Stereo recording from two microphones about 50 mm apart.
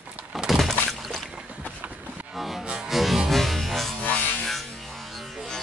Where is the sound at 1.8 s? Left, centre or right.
Right.